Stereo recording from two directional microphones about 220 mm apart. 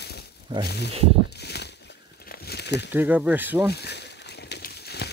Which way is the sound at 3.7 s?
50° left (ahead or behind).